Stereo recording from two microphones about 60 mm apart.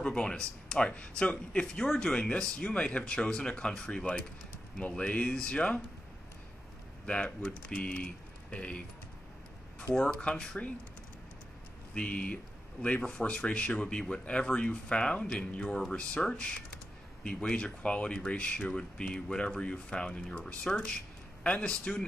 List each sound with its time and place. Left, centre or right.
0.0 s speech: centre
7.1 s speech: left
10.2 s speech: centre
11.9 s speech: left